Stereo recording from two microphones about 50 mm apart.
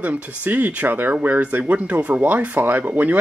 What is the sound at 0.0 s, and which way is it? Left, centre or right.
Speech, right.